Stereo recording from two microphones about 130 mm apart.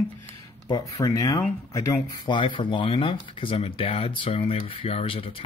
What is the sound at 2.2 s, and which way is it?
Speech, 40° left (ahead or behind).